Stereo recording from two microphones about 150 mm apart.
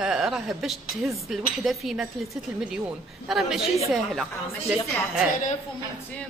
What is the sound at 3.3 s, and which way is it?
Speech, centre (ahead or behind).